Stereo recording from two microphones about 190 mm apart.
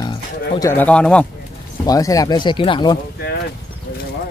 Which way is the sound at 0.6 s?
10° left (ahead or behind).